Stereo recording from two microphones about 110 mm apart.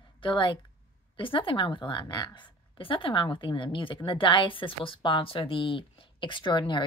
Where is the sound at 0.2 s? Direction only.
50° left (ahead or behind).